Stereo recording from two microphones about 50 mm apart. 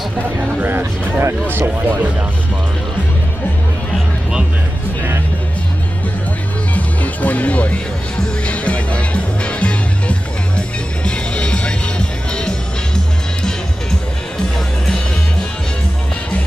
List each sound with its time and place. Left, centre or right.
0.6 s speech: right
6.7 s music: left; by 13.6 s centre